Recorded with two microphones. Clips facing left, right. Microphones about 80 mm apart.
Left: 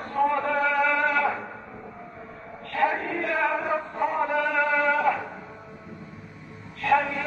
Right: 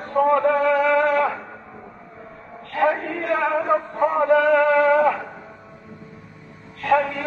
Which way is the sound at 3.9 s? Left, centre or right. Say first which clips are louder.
Right 6 dB; right.